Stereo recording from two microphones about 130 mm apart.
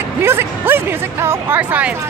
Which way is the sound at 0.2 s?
20° right (ahead or behind).